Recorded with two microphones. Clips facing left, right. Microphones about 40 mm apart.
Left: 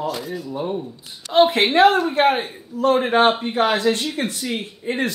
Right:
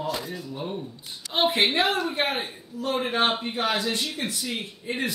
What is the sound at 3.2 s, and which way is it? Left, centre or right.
Speech, centre.